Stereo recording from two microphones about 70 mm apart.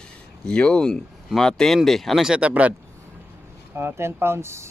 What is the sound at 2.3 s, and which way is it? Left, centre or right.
Speech, centre.